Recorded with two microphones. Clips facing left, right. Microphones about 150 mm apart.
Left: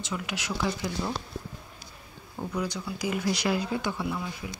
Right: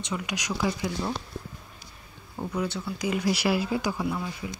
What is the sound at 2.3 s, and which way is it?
Speech, 10° right (ahead or behind).